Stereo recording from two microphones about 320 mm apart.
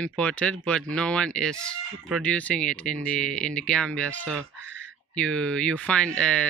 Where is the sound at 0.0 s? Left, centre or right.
Centre.